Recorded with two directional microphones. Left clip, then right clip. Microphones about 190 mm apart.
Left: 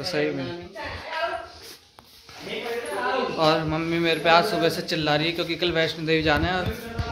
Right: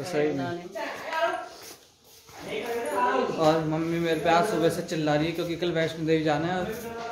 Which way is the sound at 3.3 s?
15° left (ahead or behind).